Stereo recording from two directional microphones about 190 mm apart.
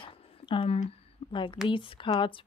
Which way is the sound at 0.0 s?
25° left (ahead or behind).